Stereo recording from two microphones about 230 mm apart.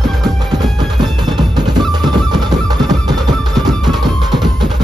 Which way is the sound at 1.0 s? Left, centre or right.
Centre.